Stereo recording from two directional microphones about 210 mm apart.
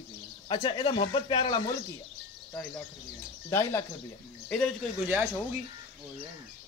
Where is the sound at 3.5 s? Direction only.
15° left (ahead or behind).